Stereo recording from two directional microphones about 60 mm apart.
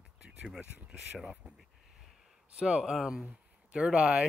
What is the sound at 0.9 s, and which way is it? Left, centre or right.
Speech, centre.